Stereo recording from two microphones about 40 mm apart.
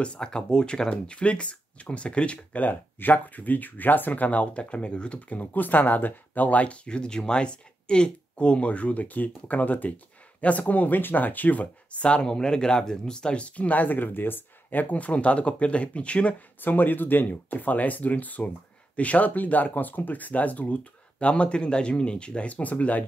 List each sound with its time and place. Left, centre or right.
0.0 s speech: left
2.3 s speech: left
5.3 s speech: left
13.6 s speech: left
16.6 s speech: left